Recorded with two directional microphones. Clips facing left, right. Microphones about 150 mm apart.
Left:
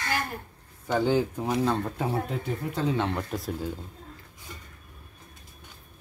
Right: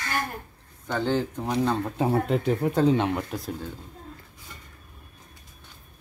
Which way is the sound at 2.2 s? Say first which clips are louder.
Right 8 dB; 80° right.